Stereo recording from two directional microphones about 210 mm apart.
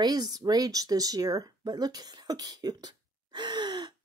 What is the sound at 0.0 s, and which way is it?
Speech, 20° right (ahead or behind).